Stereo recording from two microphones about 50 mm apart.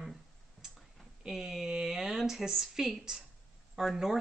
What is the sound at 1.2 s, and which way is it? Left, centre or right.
A woman's voice, centre.